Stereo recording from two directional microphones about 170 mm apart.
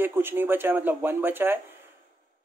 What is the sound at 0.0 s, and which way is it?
Speech, 10° right (ahead or behind).